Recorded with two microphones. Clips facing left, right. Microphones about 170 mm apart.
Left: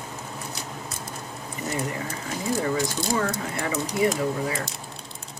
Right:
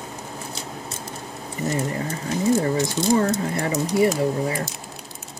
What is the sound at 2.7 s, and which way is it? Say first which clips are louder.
Speech: right 5 dB; 25° right (ahead or behind).